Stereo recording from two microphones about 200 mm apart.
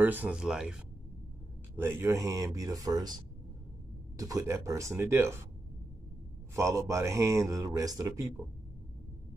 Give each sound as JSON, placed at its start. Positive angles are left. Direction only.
{"t": 0.0, "sound": "speech", "side_deg": -10}
{"t": 1.8, "sound": "a man's voice", "side_deg": -10}
{"t": 4.2, "sound": "a man's voice", "side_deg": -15}
{"t": 6.5, "sound": "a man's voice", "side_deg": -15}